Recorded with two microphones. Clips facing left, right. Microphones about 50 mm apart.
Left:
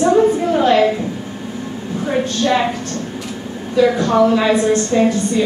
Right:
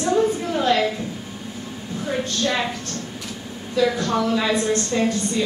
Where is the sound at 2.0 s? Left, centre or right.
Left.